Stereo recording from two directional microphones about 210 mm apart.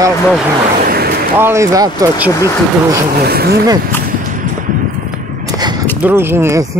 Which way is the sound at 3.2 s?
50° right (ahead or behind).